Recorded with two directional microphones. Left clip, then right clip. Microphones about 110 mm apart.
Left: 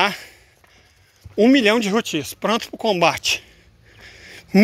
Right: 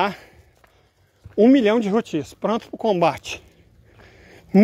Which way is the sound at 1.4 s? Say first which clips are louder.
Left 1 dB; 30° right (ahead or behind).